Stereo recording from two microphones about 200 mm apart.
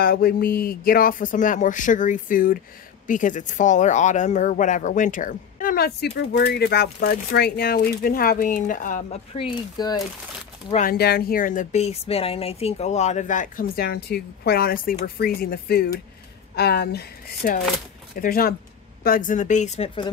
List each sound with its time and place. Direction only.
0.0 s speech: 50° left (ahead or behind); by 9.5 s 35° left (ahead or behind)
9.8 s speech: 20° left (ahead or behind)
10.7 s speech: 40° left (ahead or behind)
11.0 s speech: 50° left (ahead or behind); by 20.1 s 30° left (ahead or behind)